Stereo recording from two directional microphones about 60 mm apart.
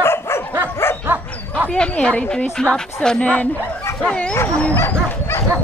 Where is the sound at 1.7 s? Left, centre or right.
Centre.